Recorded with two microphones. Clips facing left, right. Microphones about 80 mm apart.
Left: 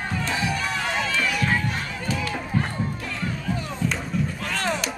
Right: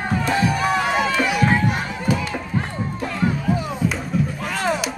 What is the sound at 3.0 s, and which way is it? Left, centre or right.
Music, right.